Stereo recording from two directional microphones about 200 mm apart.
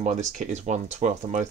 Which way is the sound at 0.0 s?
35° right (ahead or behind).